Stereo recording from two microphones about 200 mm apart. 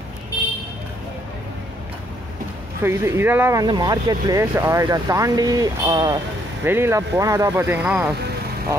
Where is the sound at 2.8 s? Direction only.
15° right (ahead or behind).